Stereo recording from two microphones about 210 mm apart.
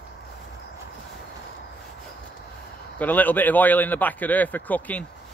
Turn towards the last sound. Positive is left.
turn(degrees=5)  # may be behind; listen again after turning